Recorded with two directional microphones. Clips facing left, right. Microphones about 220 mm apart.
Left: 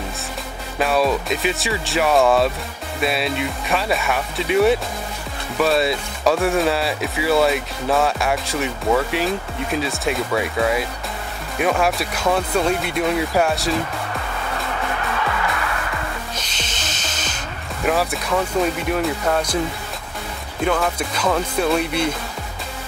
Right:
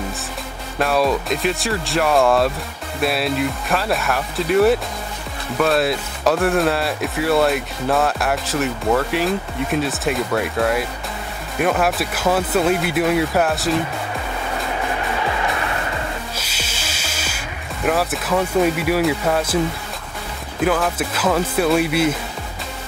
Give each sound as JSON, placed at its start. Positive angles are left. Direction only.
{"t": 0.7, "sound": "speech", "side_deg": 0}
{"t": 15.1, "sound": "music", "side_deg": -20}
{"t": 16.3, "sound": "music", "side_deg": -5}
{"t": 17.8, "sound": "speech", "side_deg": 0}
{"t": 20.6, "sound": "speech", "side_deg": -5}